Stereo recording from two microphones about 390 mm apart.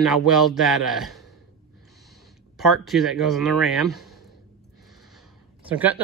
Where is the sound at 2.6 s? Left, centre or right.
Centre.